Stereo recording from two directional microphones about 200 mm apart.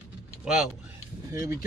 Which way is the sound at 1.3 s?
15° right (ahead or behind).